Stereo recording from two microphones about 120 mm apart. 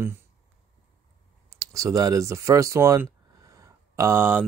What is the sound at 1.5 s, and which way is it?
Speech, 30° right (ahead or behind).